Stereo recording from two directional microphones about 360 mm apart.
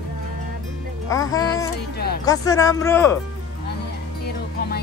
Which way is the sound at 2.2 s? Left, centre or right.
Centre.